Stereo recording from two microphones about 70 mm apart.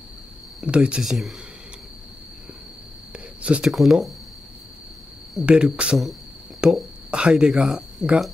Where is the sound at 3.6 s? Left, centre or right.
Centre.